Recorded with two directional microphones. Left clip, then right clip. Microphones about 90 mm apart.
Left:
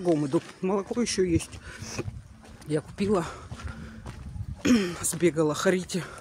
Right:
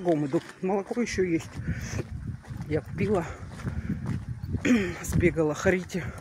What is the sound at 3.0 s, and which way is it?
Speech, 75° left (ahead or behind).